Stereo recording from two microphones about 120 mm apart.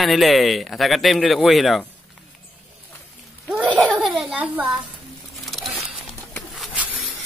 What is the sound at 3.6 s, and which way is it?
Laughter, 5° left (ahead or behind).